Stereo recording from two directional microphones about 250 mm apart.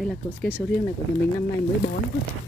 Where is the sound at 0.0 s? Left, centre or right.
Centre.